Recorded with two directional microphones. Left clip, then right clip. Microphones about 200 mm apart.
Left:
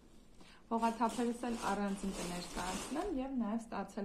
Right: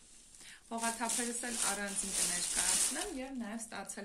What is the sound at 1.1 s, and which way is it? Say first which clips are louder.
Speech: even; 30° right (ahead or behind).